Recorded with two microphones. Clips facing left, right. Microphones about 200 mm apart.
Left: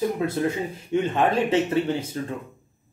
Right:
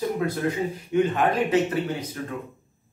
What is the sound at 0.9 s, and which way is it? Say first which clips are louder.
Speech: even; 25° left (ahead or behind).